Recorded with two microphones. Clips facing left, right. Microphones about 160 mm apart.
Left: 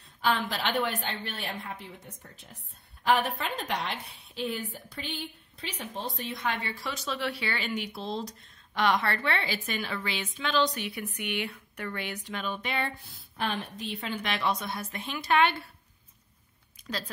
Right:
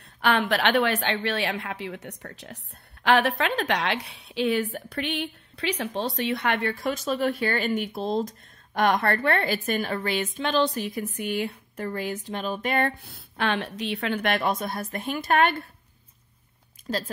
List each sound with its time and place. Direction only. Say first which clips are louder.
0.0 s a woman's voice: right 4 dB; 70° right (ahead or behind); by 15.7 s 50° right (ahead or behind)
16.9 s speech: right 7 dB; 40° right (ahead or behind)